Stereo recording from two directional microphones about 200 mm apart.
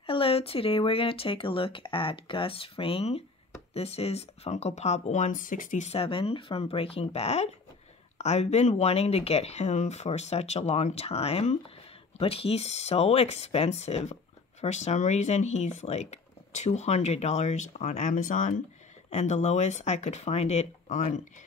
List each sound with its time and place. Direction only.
0.0 s speech: 25° left (ahead or behind)